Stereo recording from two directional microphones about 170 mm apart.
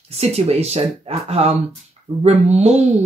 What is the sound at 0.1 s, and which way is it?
Speech, 40° right (ahead or behind).